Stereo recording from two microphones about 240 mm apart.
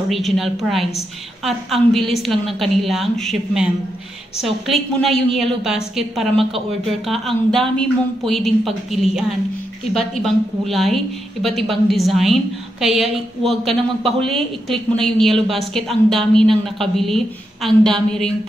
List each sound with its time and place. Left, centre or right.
0.1 s a woman's voice: centre